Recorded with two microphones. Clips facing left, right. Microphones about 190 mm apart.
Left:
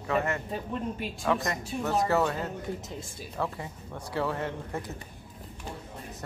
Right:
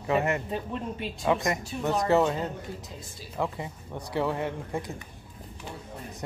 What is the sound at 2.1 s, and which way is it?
A man's voice, 20° right (ahead or behind).